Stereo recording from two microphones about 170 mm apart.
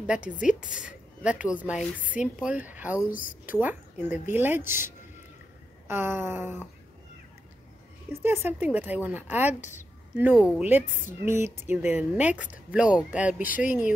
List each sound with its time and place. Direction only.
0.0 s a woman's voice: 5° right (ahead or behind)
3.1 s speech: 55° left (ahead or behind)
3.6 s speech: 10° right (ahead or behind)
8.1 s speech: 15° right (ahead or behind)